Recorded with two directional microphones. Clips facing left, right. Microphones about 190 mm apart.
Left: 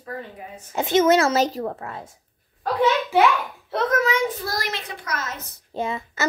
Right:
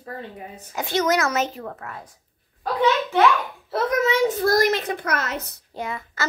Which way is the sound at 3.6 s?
5° right (ahead or behind).